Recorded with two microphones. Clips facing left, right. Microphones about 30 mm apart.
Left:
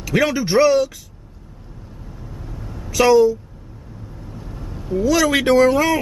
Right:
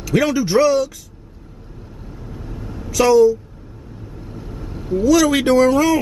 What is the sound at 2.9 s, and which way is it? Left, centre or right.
Speech, centre.